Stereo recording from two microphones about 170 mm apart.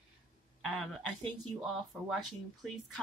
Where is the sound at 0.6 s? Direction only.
5° left (ahead or behind).